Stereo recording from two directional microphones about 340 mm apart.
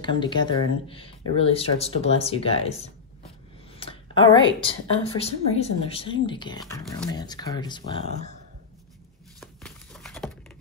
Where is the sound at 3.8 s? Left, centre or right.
Centre.